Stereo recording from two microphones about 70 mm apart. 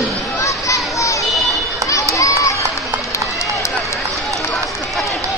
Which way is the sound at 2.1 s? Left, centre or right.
Left.